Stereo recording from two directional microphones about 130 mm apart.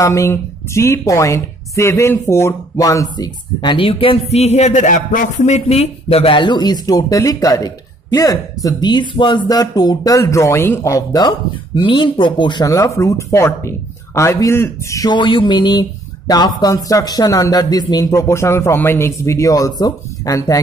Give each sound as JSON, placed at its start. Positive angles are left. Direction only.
{"t": 0.0, "sound": "speech", "side_deg": 25}
{"t": 15.1, "sound": "speech", "side_deg": 40}